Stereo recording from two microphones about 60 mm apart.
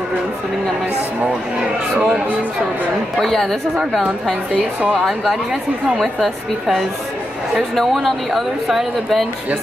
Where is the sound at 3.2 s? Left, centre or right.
Centre.